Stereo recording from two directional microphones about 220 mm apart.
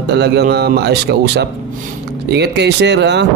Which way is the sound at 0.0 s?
50° right (ahead or behind).